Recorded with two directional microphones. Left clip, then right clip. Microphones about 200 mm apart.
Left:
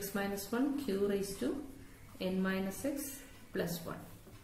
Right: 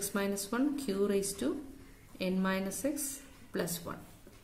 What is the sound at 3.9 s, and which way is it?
Speech, 50° right (ahead or behind).